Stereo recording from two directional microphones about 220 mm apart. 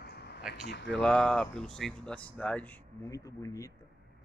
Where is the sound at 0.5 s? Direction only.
50° left (ahead or behind).